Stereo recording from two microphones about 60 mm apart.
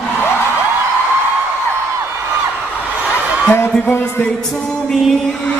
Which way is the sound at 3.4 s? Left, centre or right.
Left.